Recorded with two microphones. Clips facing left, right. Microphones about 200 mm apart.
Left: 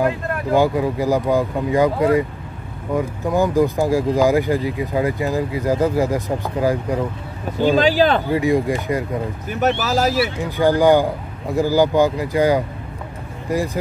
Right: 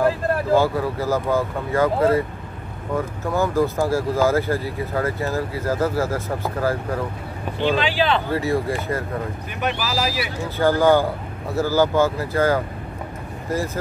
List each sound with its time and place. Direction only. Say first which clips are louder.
0.6 s speech: left 3 dB; 15° left (ahead or behind)
7.5 s speech: left 6 dB; 40° left (ahead or behind)
8.3 s speech: left 4 dB; 15° left (ahead or behind)
9.5 s speech: left 8 dB; 40° left (ahead or behind)
10.4 s speech: left 1 dB; 15° left (ahead or behind)